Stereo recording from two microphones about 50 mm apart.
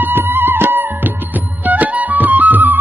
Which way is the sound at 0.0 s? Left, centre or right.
Right.